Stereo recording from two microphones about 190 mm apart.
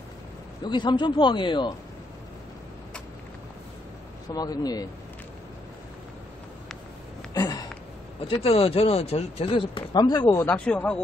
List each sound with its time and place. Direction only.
0.7 s speech: 25° left (ahead or behind)
4.3 s speech: 20° left (ahead or behind)
7.3 s a sound: 20° left (ahead or behind)
8.3 s speech: 30° left (ahead or behind)
10.5 s speech: 5° left (ahead or behind)